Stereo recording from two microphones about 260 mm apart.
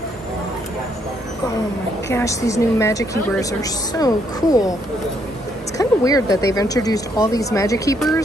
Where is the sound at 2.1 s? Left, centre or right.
Centre.